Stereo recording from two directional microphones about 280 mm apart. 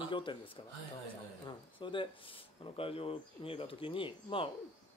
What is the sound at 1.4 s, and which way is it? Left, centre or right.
Speech, centre.